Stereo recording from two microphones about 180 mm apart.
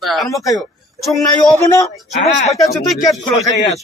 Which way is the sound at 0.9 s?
Centre (ahead or behind).